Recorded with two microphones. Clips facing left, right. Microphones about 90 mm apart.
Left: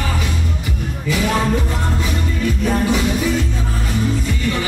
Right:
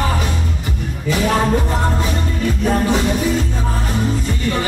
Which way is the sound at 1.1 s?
35° right (ahead or behind).